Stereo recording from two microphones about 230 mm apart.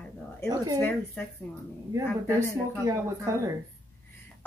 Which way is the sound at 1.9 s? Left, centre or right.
Centre.